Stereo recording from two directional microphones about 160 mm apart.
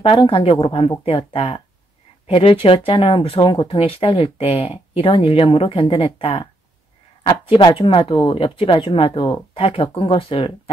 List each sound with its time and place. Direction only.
0.0 s speech: 35° left (ahead or behind)